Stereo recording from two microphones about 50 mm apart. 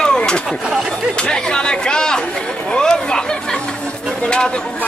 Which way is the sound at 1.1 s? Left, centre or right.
Centre.